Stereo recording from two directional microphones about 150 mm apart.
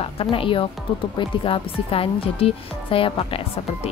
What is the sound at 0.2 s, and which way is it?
A woman's voice, 35° left (ahead or behind).